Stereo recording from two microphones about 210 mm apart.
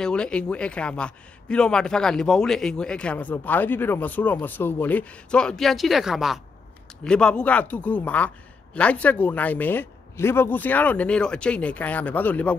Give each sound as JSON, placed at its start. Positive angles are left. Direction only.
{"t": 0.0, "sound": "a man's voice", "side_deg": 5}